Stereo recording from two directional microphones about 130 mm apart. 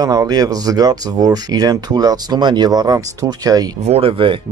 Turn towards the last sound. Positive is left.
turn(degrees=-45)  # may be behind; listen again after turning